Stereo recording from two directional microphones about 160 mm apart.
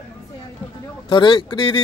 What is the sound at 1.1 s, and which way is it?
Speech, 30° left (ahead or behind).